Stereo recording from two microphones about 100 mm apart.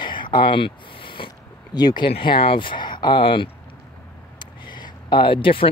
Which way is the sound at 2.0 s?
60° left (ahead or behind).